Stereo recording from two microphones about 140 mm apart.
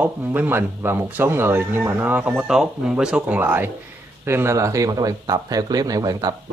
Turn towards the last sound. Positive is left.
turn(degrees=-25)  # may be behind; listen again after turning